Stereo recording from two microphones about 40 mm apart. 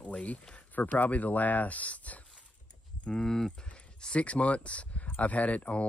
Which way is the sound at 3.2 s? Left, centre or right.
Centre.